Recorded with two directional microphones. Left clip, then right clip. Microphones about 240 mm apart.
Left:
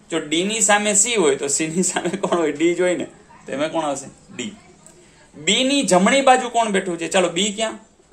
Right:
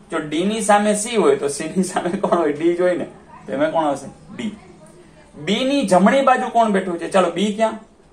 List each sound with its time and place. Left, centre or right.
0.1 s a man's voice: left
5.4 s speech: left